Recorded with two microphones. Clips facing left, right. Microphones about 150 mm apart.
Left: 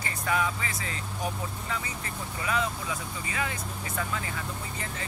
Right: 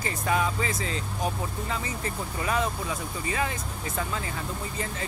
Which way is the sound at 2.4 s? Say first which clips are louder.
Right 2 dB; 40° right (ahead or behind).